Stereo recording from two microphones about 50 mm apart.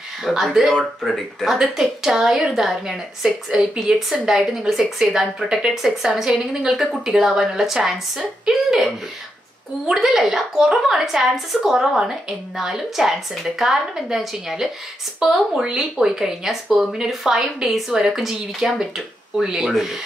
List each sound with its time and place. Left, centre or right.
0.2 s a woman's voice: centre
1.6 s a woman's voice: centre
12.0 s a woman's voice: centre